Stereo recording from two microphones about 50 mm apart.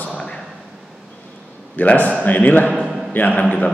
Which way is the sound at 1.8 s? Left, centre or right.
Left.